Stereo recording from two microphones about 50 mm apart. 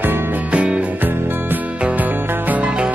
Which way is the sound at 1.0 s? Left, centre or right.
Right.